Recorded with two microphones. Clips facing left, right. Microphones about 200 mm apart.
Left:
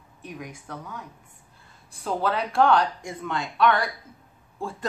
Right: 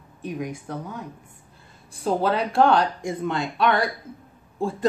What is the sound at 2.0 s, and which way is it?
A woman's voice, 30° right (ahead or behind).